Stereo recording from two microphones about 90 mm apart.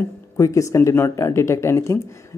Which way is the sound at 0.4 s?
35° left (ahead or behind).